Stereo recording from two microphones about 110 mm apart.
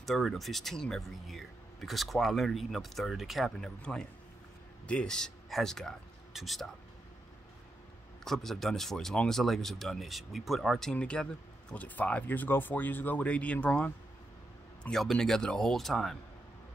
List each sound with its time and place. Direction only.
0.0 s speech: centre (ahead or behind)
8.2 s speech: 5° left (ahead or behind)